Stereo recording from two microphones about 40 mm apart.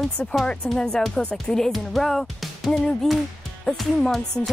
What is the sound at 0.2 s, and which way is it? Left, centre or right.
Speech, left.